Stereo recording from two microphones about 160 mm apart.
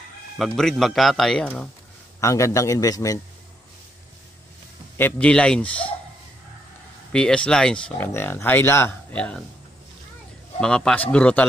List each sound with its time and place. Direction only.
0.4 s speech: centre (ahead or behind)
2.1 s a man's voice: 20° left (ahead or behind)
4.9 s speech: 10° left (ahead or behind)
7.1 s speech: 5° left (ahead or behind)
10.6 s speech: 5° left (ahead or behind)